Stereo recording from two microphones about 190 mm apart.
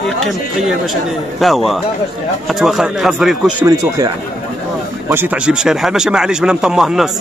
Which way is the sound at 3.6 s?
20° right (ahead or behind).